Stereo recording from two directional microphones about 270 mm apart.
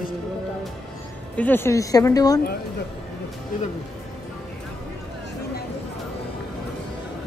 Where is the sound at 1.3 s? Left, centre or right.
Centre.